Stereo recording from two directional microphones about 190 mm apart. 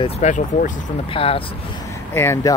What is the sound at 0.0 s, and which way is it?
Speech, 40° left (ahead or behind).